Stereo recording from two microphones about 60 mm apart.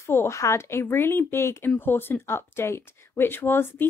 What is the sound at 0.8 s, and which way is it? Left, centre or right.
Speech, left.